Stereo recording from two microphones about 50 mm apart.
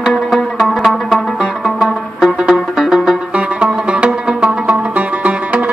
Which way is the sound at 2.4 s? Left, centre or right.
Centre.